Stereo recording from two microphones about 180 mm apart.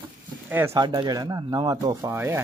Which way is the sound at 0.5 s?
10° right (ahead or behind).